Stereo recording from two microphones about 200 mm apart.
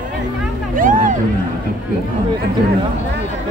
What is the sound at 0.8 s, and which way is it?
Speech, 40° right (ahead or behind).